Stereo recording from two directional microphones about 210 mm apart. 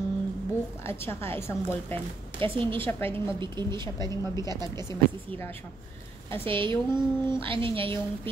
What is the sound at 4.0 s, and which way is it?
Speech, 15° left (ahead or behind).